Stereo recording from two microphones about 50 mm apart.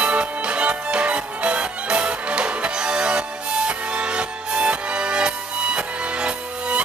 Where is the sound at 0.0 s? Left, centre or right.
Right.